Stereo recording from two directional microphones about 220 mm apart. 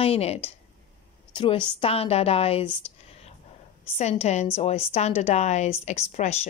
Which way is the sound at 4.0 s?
30° left (ahead or behind).